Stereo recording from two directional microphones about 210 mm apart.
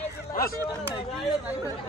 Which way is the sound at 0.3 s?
45° left (ahead or behind).